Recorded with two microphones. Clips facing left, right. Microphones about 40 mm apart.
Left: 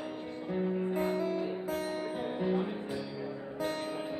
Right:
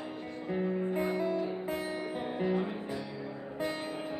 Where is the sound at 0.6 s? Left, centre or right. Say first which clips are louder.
Even; centre.